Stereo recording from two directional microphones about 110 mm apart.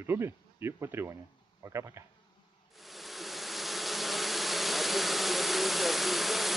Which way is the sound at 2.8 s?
Centre (ahead or behind).